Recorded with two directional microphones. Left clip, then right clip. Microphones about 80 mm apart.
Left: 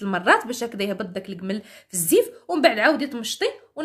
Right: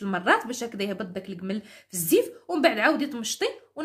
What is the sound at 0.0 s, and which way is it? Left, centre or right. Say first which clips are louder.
Speech: left 4 dB; left.